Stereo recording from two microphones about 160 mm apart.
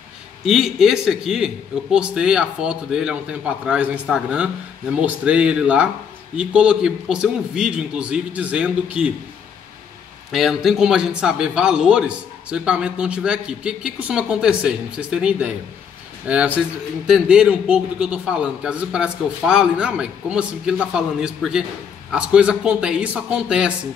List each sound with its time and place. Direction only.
0.5 s a man's voice: centre (ahead or behind)
10.3 s a man's voice: centre (ahead or behind)